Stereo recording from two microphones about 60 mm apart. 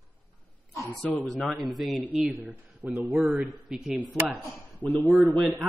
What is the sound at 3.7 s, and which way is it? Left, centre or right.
Speech, centre.